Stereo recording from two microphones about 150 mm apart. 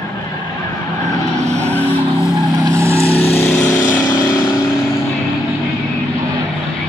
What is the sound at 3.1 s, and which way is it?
Vehicle, 40° left (ahead or behind).